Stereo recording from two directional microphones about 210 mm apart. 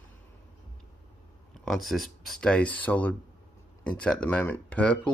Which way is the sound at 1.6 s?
Centre (ahead or behind).